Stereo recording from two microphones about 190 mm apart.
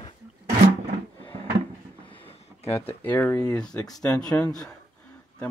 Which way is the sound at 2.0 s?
25° left (ahead or behind).